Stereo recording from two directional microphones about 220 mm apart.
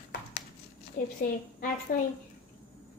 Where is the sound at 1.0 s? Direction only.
40° left (ahead or behind).